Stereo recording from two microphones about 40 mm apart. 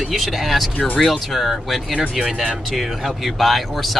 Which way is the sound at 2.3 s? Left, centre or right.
Centre.